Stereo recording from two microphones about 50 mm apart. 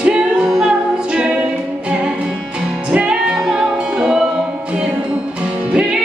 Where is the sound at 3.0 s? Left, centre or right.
Centre.